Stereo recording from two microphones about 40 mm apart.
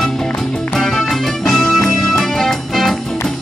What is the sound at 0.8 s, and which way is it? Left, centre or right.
Music, centre.